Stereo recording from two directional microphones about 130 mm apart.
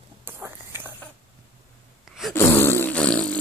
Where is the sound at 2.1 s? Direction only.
Centre (ahead or behind).